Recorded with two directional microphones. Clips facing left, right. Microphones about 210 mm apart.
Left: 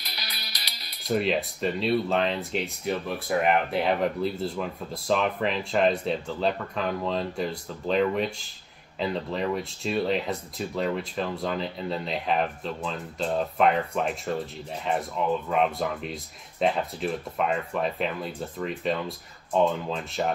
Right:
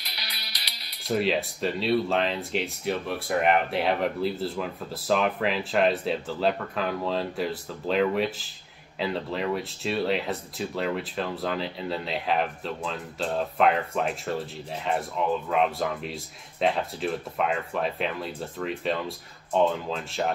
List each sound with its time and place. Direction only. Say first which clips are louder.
0.0 s music: left 1 dB; 45° left (ahead or behind)
1.0 s speech: even; centre (ahead or behind)